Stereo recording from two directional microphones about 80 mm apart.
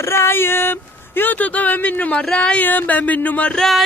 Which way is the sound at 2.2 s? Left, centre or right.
Centre.